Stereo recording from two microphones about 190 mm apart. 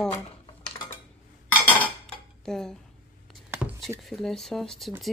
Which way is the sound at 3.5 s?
10° right (ahead or behind).